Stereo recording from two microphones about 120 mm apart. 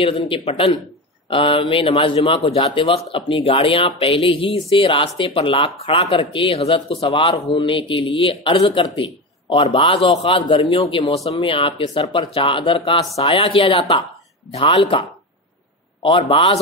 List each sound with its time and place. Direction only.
0.0 s a man's voice: 50° left (ahead or behind)